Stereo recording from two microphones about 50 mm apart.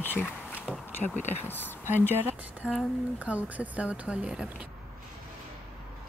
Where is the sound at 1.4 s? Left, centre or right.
Left.